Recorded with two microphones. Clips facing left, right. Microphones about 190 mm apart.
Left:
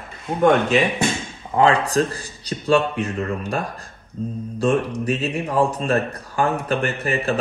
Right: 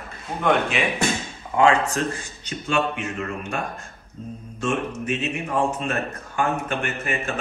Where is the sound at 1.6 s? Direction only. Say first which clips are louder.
Left 2 dB; 35° left (ahead or behind).